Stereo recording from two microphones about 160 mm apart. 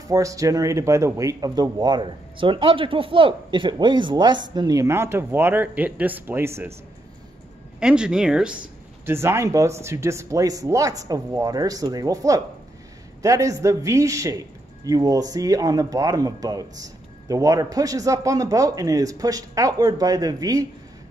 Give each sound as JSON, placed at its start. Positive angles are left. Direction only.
{"t": 0.1, "sound": "a man's voice", "side_deg": -20}
{"t": 7.8, "sound": "speech", "side_deg": -5}
{"t": 9.0, "sound": "a man's voice", "side_deg": -15}